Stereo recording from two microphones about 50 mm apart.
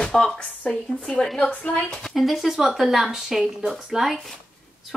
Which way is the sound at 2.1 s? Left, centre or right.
Centre.